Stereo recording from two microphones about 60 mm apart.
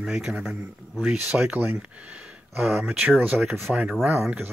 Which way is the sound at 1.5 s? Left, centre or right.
Right.